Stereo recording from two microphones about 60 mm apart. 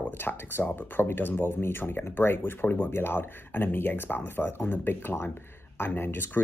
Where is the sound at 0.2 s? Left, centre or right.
Left.